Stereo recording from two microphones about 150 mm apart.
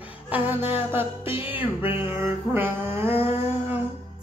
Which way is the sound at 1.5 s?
15° right (ahead or behind).